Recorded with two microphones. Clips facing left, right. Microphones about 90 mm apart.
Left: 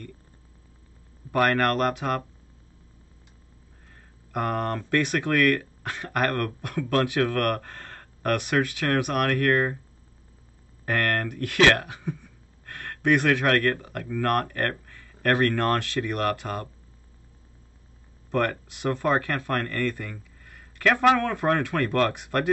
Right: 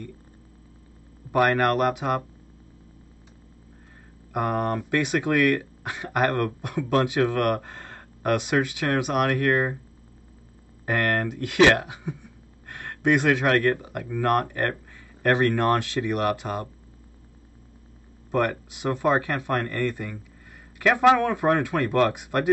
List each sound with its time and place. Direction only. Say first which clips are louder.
1.3 s speech: right 2 dB; 15° right (ahead or behind)
4.3 s speech: right 2 dB; 15° right (ahead or behind)
10.9 s speech: right 1 dB; 15° right (ahead or behind)
18.3 s speech: right 1 dB; 15° right (ahead or behind)